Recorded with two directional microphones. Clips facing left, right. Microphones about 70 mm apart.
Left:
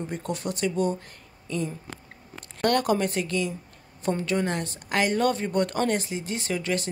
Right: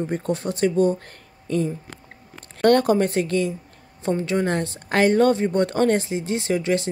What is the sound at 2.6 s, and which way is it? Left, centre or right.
A woman's voice, right.